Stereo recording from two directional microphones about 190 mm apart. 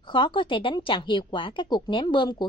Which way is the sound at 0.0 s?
25° left (ahead or behind).